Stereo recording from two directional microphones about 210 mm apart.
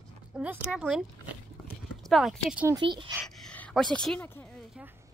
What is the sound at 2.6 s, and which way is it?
Speech, 20° right (ahead or behind).